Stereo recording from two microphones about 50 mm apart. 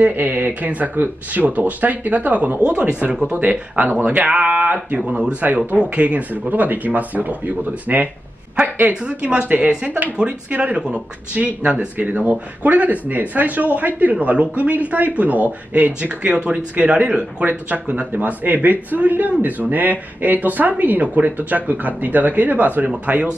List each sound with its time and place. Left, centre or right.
0.0 s speech: right
2.6 s speech: right
3.3 s speech: right
12.0 s speech: right